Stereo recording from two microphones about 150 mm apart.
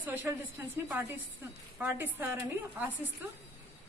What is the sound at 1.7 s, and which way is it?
Speech, 10° right (ahead or behind).